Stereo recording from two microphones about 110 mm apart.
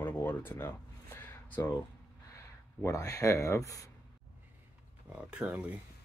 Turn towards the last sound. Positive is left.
turn(degrees=-10)  # may be behind; listen again after turning